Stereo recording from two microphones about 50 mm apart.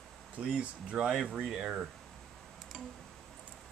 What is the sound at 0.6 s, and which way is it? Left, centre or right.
Speech, centre.